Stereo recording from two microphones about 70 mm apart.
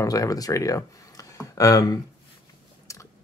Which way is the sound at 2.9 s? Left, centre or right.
Left.